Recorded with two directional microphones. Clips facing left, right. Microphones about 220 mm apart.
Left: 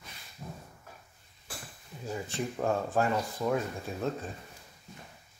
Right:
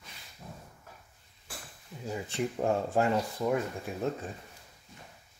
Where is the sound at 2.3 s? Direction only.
20° right (ahead or behind).